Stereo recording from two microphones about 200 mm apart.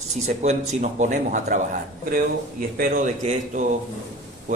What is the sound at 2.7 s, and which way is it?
Speech, 45° right (ahead or behind).